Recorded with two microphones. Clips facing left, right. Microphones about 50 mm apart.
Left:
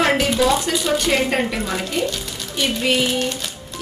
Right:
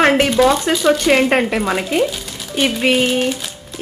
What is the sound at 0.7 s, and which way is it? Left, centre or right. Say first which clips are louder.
A woman's voice: right 5 dB; right.